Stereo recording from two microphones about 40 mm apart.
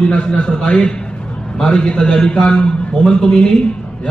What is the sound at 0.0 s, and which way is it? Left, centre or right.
A man's voice, left.